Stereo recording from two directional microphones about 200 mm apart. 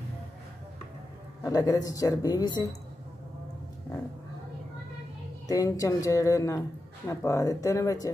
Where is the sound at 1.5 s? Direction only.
20° left (ahead or behind).